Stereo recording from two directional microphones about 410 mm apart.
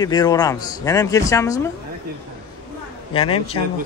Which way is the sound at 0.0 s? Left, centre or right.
Centre.